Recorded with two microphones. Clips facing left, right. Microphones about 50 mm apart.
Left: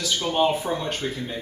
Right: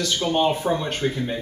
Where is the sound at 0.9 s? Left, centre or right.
Right.